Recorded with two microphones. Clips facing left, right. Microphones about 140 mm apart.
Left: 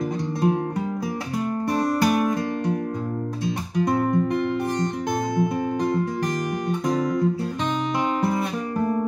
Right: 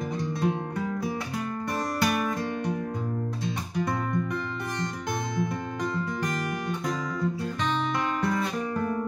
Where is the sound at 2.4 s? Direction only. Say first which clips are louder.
Left 5 dB; 50° left (ahead or behind).